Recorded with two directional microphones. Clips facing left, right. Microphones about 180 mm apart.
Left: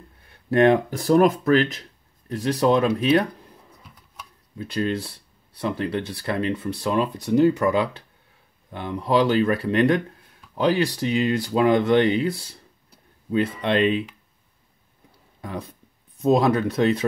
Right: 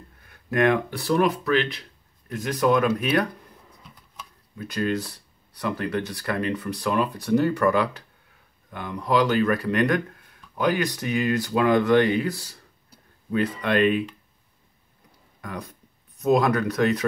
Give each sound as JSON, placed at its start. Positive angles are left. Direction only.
{"t": 0.3, "sound": "speech", "side_deg": 30}
{"t": 4.6, "sound": "speech", "side_deg": 30}
{"t": 15.4, "sound": "speech", "side_deg": 25}